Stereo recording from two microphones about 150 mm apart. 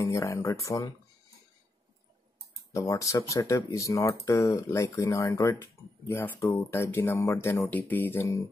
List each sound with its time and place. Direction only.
0.0 s speech: 20° left (ahead or behind)
2.7 s speech: 20° left (ahead or behind)